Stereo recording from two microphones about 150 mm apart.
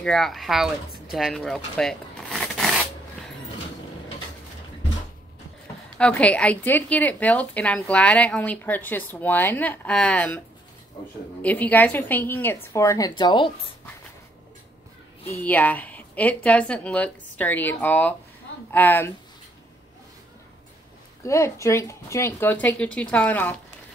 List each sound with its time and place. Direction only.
0.0 s speech: 5° left (ahead or behind)
5.9 s a woman's voice: 10° left (ahead or behind)
11.4 s a woman's voice: 10° left (ahead or behind); by 13.5 s 30° left (ahead or behind)
15.2 s a woman's voice: 10° left (ahead or behind)
21.2 s a woman's voice: 20° left (ahead or behind)